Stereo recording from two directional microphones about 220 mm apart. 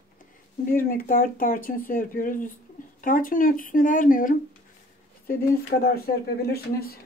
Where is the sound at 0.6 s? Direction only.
40° left (ahead or behind).